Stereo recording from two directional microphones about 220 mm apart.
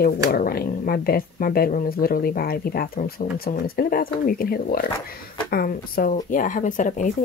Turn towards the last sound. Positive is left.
turn(degrees=35)  # may be behind; listen again after turning